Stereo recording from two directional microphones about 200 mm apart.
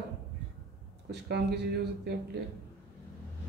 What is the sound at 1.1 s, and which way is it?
Speech, 55° right (ahead or behind).